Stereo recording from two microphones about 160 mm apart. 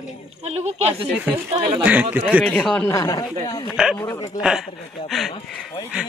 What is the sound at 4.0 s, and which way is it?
Speech, 20° left (ahead or behind).